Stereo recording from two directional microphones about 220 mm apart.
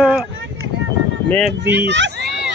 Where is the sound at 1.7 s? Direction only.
55° right (ahead or behind).